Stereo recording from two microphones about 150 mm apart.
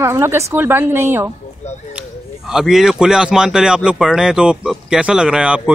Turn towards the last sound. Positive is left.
turn(degrees=-5)  # may be behind; listen again after turning